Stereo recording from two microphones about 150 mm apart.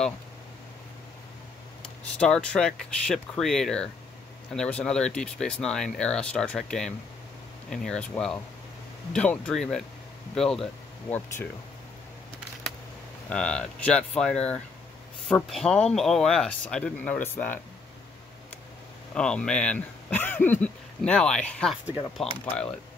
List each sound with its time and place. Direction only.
2.1 s speech: 5° left (ahead or behind)
13.3 s speech: 5° left (ahead or behind)
19.1 s speech: 5° left (ahead or behind)